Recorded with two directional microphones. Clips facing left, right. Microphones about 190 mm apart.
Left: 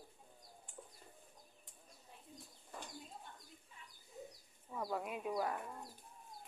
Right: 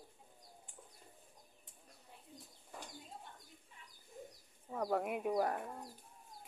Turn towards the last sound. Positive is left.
turn(degrees=-40)  # may be behind; listen again after turning